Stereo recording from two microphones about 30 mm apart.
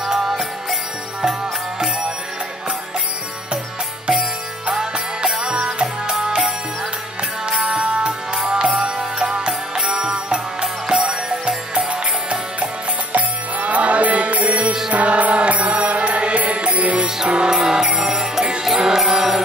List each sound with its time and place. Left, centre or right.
0.1 s music: centre
4.7 s music: right
7.6 s music: right
11.9 s music: right
14.9 s mantra: right
17.3 s music: right
17.6 s music: right